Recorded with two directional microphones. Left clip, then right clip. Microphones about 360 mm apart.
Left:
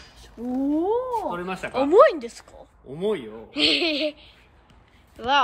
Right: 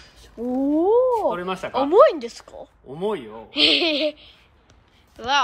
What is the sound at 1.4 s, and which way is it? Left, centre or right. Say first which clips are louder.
Speech: right 2 dB; centre.